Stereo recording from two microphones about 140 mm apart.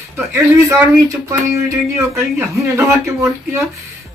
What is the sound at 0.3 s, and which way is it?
Speech, 20° right (ahead or behind).